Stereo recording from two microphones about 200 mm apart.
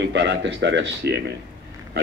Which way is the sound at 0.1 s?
60° right (ahead or behind).